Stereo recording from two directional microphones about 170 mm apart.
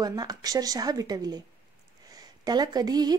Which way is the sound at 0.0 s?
20° right (ahead or behind).